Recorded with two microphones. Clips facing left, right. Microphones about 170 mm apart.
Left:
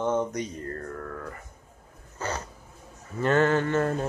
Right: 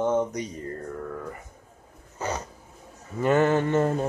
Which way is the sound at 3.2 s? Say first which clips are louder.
Right 1 dB; 10° right (ahead or behind).